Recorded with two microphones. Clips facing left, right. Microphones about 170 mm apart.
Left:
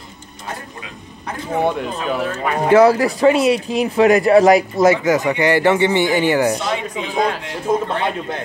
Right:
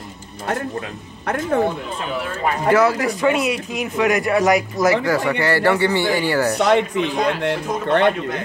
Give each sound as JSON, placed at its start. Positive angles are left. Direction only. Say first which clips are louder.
{"t": 2.7, "sound": "speech", "louder": "left 5 dB", "side_deg": 35}
{"t": 6.7, "sound": "speech", "louder": "right 6 dB", "side_deg": -65}